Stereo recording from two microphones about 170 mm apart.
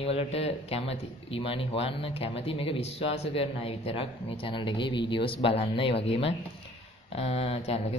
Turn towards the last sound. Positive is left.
turn(degrees=35)  # may be behind; listen again after turning